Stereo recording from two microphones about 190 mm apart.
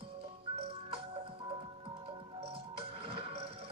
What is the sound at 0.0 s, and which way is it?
Music, 30° right (ahead or behind).